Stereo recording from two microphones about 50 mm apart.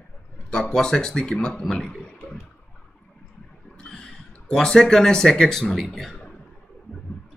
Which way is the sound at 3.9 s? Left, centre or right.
Centre.